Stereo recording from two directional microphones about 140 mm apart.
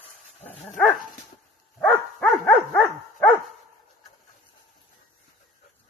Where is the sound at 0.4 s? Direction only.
10° left (ahead or behind).